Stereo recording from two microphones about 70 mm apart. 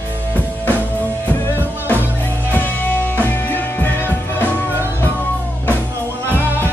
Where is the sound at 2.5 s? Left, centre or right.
Left.